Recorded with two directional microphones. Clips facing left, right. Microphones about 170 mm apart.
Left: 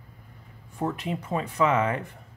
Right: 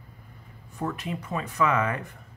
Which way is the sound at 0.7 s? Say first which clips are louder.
Left 2 dB; 25° left (ahead or behind).